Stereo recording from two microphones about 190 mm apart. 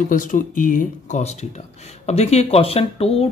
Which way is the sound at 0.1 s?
45° left (ahead or behind).